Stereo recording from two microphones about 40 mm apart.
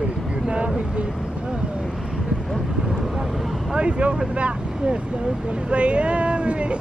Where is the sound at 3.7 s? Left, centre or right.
Right.